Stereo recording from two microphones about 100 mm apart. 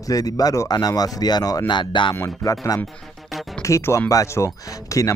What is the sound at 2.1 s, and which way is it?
A man's voice, 35° left (ahead or behind).